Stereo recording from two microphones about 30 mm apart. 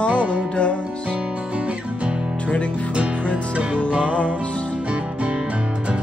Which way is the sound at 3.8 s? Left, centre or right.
Right.